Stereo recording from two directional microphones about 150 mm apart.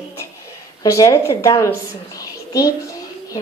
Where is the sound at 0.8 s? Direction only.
20° left (ahead or behind).